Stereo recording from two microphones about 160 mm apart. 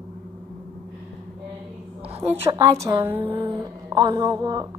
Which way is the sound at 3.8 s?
25° right (ahead or behind).